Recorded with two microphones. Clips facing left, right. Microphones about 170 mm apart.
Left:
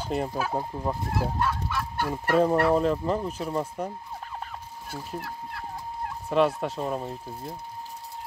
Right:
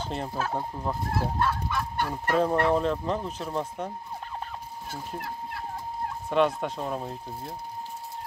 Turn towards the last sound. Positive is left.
turn(degrees=0)  # may be behind; listen again after turning